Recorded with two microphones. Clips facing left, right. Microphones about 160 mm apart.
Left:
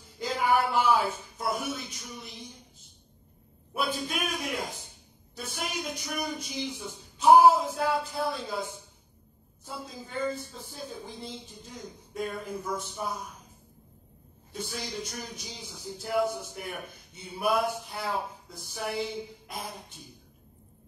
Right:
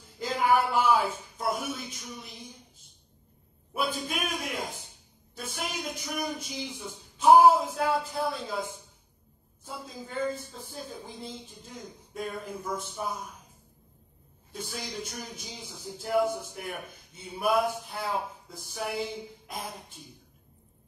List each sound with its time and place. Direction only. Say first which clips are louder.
0.2 s speech: right 1 dB; centre (ahead or behind)
3.7 s speech: even; centre (ahead or behind)
5.3 s speech: even; centre (ahead or behind)
9.7 s speech: even; centre (ahead or behind)
14.5 s speech: left 1 dB; centre (ahead or behind)